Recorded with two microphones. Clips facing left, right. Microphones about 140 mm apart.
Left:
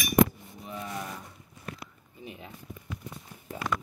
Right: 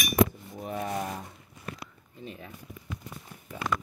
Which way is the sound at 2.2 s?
10° left (ahead or behind).